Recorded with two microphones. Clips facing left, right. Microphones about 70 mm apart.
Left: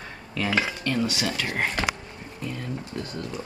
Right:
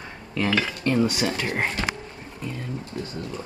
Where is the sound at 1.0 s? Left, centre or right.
Right.